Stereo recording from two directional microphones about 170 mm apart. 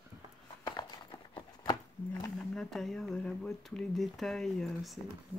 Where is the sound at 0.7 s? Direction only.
25° left (ahead or behind).